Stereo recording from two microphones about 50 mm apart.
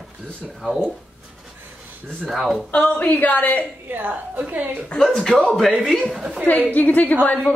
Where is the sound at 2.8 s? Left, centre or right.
Left.